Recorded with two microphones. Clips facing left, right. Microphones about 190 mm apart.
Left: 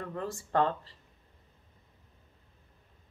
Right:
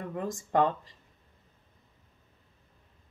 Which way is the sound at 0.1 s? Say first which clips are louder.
Right 3 dB; 15° right (ahead or behind).